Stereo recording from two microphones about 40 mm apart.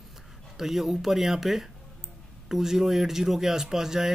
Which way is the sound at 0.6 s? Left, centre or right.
Centre.